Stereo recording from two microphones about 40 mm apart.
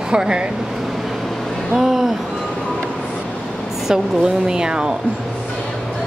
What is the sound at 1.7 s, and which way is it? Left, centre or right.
Speech, centre.